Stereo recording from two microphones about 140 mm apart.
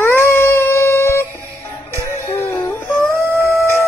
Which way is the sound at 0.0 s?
15° left (ahead or behind).